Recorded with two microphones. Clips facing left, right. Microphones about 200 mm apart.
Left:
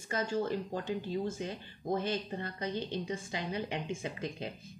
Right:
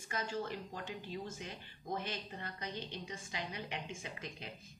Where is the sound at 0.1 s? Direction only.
30° left (ahead or behind).